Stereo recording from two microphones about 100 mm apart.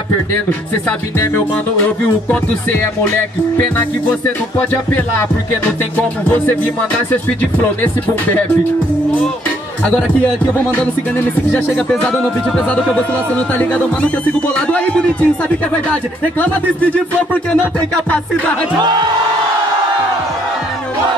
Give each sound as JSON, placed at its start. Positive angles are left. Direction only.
{"t": 1.2, "sound": "speech", "side_deg": 20}
{"t": 5.9, "sound": "speech", "side_deg": 15}
{"t": 10.8, "sound": "speech", "side_deg": 15}